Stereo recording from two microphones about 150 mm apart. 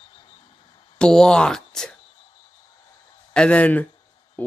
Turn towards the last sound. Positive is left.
turn(degrees=10)  # may be behind; listen again after turning